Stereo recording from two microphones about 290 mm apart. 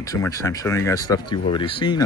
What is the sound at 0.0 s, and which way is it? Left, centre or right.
Speech, centre.